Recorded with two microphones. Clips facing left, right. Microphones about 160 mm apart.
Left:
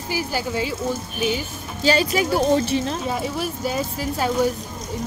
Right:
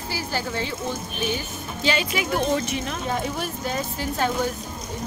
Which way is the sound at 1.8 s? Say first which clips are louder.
Left 5 dB; 40° left (ahead or behind).